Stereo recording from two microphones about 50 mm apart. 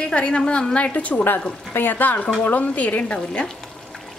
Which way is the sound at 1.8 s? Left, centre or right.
Left.